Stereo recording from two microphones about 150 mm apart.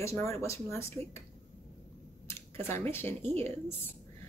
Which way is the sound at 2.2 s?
15° left (ahead or behind).